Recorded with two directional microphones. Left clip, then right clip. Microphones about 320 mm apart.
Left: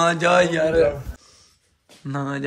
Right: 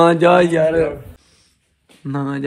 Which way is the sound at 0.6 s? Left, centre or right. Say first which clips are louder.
Right 2 dB; centre.